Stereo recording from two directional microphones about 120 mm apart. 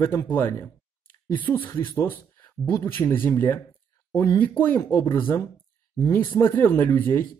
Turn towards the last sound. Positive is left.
turn(degrees=20)  # may be behind; listen again after turning